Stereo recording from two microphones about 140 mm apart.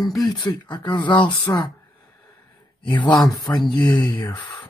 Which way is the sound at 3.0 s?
30° left (ahead or behind).